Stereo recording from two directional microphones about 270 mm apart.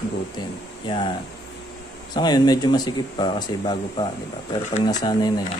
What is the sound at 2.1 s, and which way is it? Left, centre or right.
Speech, centre.